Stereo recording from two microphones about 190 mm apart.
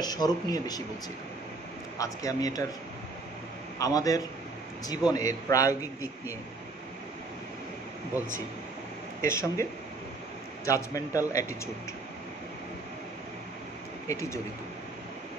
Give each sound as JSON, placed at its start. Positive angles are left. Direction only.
{"t": 0.0, "sound": "speech", "side_deg": 20}
{"t": 2.0, "sound": "speech", "side_deg": 20}
{"t": 3.7, "sound": "a man's voice", "side_deg": 20}
{"t": 9.2, "sound": "a man's voice", "side_deg": 15}
{"t": 14.0, "sound": "a man's voice", "side_deg": 15}